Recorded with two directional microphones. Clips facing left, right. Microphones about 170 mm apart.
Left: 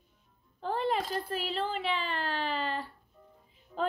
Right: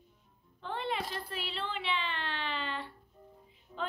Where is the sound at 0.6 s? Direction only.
40° left (ahead or behind).